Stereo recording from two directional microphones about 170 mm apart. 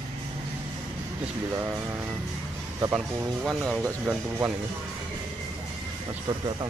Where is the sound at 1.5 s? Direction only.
15° right (ahead or behind).